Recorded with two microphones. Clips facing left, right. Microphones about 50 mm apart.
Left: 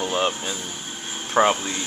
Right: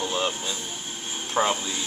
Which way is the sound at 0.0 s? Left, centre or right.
Left.